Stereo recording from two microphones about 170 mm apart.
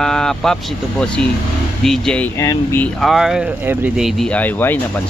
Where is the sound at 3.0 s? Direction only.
Centre (ahead or behind).